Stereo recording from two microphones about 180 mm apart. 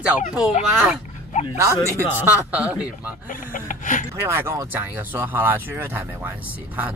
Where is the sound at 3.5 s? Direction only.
45° left (ahead or behind).